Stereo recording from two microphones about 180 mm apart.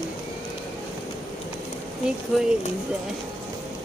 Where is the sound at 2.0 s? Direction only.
5° right (ahead or behind).